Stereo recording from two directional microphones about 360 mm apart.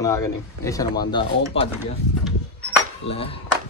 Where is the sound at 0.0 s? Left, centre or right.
Centre.